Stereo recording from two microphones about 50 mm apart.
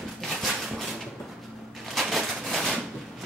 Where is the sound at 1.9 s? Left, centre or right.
Centre.